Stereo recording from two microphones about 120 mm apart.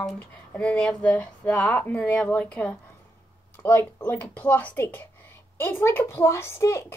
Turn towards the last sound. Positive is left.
turn(degrees=25)  # may be behind; listen again after turning